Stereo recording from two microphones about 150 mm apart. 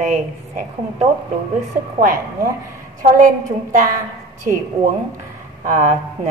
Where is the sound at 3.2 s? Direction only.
60° right (ahead or behind).